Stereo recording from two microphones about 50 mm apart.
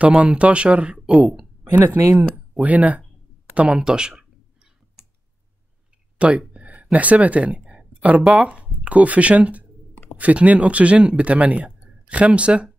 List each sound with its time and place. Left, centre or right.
0.0 s speech: right
3.5 s speech: centre
5.0 s clicking: centre
6.1 s speech: right
6.5 s a sound: right
8.3 s speech: right